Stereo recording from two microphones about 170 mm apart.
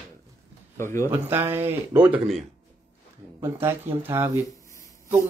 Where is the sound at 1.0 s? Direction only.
15° right (ahead or behind).